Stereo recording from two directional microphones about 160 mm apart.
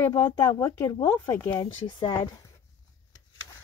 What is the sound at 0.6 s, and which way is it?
Speech, 15° left (ahead or behind).